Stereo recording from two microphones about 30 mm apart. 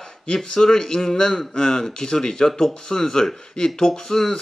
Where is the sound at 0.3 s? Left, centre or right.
Centre.